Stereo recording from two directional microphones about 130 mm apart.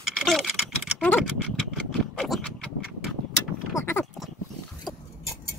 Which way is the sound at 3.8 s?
20° left (ahead or behind).